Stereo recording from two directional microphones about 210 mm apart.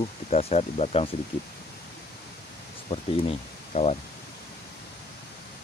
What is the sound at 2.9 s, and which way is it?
Speech, 30° left (ahead or behind).